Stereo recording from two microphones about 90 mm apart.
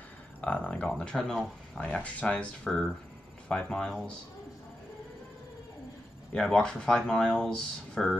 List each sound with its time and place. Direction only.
0.4 s speech: 15° left (ahead or behind)
6.3 s speech: 5° left (ahead or behind)